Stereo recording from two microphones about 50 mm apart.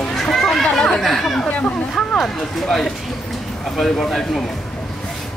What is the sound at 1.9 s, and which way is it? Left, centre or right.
Speech, centre.